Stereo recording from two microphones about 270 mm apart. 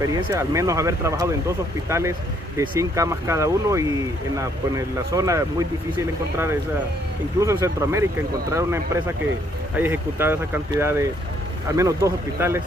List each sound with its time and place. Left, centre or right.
0.0 s speech: centre